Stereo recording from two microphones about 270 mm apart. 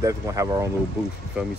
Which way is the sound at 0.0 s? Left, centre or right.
Centre.